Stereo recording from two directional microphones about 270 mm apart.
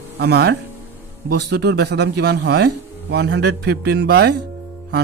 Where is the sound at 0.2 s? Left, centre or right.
Right.